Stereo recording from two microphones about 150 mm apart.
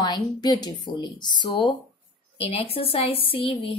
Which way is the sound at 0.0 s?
30° left (ahead or behind).